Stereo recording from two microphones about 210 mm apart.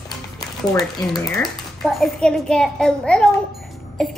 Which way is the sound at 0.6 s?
Centre (ahead or behind).